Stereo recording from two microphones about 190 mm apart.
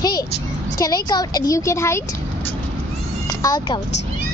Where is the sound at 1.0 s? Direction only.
20° left (ahead or behind).